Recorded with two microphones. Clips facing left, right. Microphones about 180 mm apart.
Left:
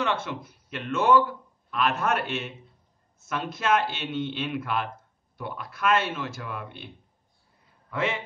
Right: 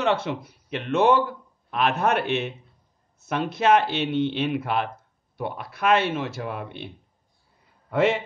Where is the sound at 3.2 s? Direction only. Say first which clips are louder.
Right 6 dB; 65° right (ahead or behind).